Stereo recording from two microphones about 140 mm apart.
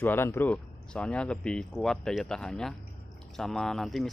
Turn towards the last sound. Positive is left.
turn(degrees=0)  # may be behind; listen again after turning